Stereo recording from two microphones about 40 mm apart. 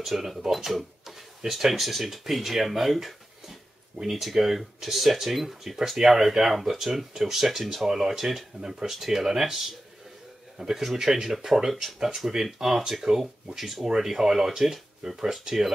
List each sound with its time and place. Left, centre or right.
0.0 s speech: centre
8.5 s speech: right
8.9 s speech: centre